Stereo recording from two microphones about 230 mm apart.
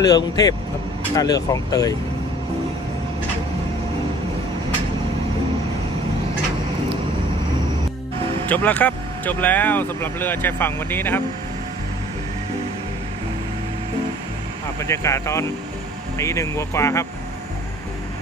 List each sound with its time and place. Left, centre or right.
0.0 s speech: centre
8.5 s speech: centre
14.8 s speech: centre